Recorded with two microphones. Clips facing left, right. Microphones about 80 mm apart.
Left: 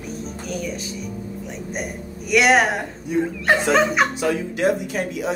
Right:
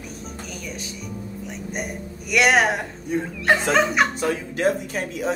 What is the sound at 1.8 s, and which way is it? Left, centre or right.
A man's voice, centre.